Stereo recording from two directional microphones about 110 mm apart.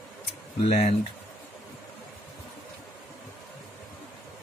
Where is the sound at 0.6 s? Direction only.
90° left.